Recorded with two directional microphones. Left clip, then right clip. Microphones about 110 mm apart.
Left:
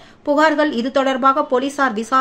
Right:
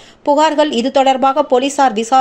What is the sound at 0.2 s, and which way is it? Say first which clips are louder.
A woman's voice: right 3 dB; 25° right (ahead or behind).